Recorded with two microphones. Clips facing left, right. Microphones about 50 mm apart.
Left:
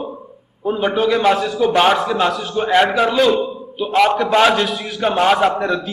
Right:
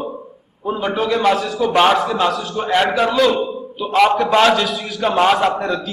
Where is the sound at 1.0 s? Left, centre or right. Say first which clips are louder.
Left 1 dB; centre.